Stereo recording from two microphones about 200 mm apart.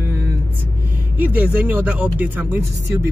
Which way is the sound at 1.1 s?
5° right (ahead or behind).